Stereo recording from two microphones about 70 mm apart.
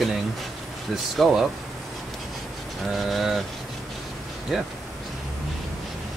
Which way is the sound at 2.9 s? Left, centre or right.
Centre.